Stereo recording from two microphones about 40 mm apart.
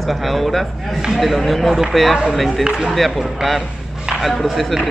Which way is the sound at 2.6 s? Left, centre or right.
Right.